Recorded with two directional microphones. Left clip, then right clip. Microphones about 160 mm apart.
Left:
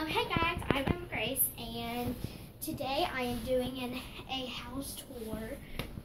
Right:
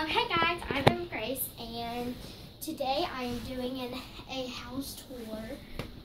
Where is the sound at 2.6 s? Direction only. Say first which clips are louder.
Right 2 dB; 5° right (ahead or behind).